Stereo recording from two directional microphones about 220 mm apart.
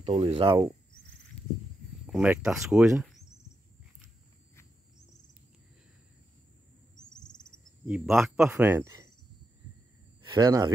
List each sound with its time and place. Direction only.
0.0 s speech: 30° right (ahead or behind)
0.5 s speech: 15° right (ahead or behind)
2.0 s speech: 5° right (ahead or behind)
7.1 s cricket: 20° left (ahead or behind)
7.8 s speech: 5° right (ahead or behind)
10.2 s speech: 20° right (ahead or behind)